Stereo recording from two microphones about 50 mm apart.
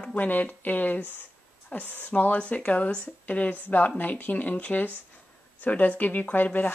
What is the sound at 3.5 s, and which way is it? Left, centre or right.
Speech, left.